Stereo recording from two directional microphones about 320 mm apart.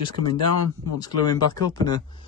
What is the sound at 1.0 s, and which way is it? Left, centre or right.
Speech, centre.